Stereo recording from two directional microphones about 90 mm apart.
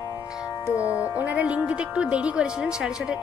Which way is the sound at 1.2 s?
15° right (ahead or behind).